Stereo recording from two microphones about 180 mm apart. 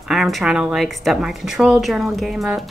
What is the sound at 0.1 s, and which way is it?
Speech, centre (ahead or behind).